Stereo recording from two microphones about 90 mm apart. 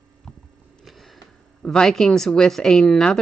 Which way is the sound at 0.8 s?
Centre (ahead or behind).